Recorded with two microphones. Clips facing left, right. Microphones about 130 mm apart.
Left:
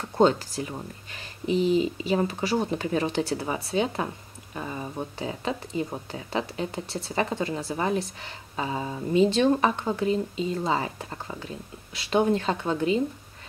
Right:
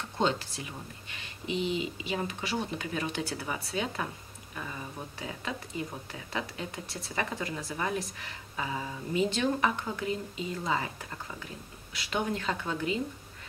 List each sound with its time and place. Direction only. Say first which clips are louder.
0.2 s speech: left 9 dB; 40° left (ahead or behind)